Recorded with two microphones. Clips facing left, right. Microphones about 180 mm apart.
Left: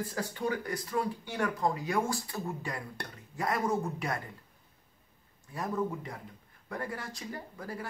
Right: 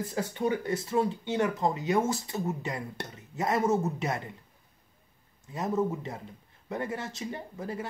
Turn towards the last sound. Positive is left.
turn(degrees=-20)  # may be behind; listen again after turning